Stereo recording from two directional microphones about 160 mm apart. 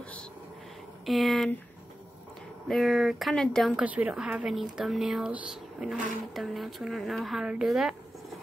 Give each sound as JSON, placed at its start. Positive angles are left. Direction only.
{"t": 1.0, "sound": "speech", "side_deg": 0}
{"t": 2.7, "sound": "speech", "side_deg": 0}
{"t": 3.8, "sound": "speech", "side_deg": -10}